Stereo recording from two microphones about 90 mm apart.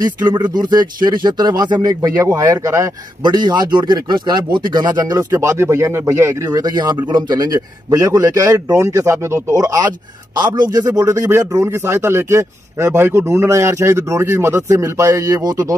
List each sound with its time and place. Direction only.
0.3 s speech: 55° right (ahead or behind); by 2.9 s 35° right (ahead or behind)
3.3 s speech: 55° right (ahead or behind)
5.3 s a man's voice: 30° right (ahead or behind)
10.3 s speech: 55° right (ahead or behind)
11.1 s a man's voice: 30° right (ahead or behind)